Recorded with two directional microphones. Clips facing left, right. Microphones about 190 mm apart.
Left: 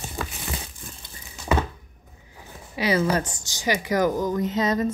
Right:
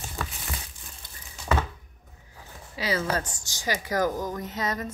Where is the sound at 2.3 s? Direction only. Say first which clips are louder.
Left 5 dB; 15° left (ahead or behind).